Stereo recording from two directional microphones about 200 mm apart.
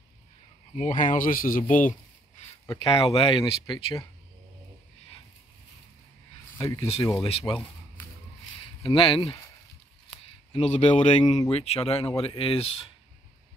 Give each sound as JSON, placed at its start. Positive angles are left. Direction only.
{"t": 0.7, "sound": "speech", "side_deg": 40}
{"t": 2.8, "sound": "speech", "side_deg": 30}
{"t": 6.6, "sound": "speech", "side_deg": 15}
{"t": 8.8, "sound": "speech", "side_deg": 25}